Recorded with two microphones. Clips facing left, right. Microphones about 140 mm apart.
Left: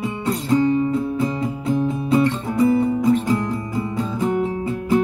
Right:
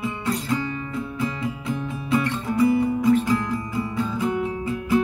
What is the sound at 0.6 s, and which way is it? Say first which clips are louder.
Music: left 11 dB; 30° left (ahead or behind).